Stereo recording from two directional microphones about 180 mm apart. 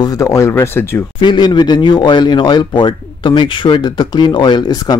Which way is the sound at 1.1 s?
25° left (ahead or behind).